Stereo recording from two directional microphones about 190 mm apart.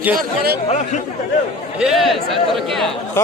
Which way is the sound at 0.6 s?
40° left (ahead or behind).